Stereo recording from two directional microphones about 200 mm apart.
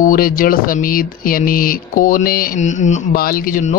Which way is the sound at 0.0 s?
45° left (ahead or behind).